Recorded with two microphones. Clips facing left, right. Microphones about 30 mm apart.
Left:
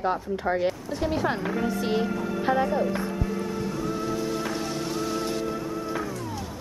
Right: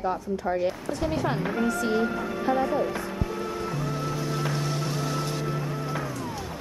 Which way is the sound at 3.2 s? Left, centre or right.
Centre.